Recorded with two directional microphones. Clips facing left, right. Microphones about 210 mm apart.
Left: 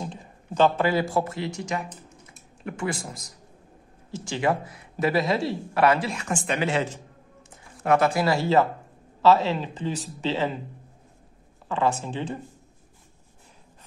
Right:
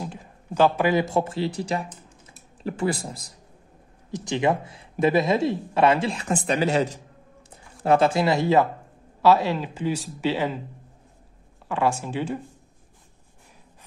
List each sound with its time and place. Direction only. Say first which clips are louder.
0.0 s speech: right 1 dB; 10° right (ahead or behind); by 3.3 s 35° right (ahead or behind)
4.1 s speech: right 2 dB; 20° right (ahead or behind); by 7.0 s 40° right (ahead or behind)
7.8 s speech: right 2 dB; 30° right (ahead or behind); by 10.6 s 10° right (ahead or behind)
11.7 s speech: right 1 dB; 10° right (ahead or behind)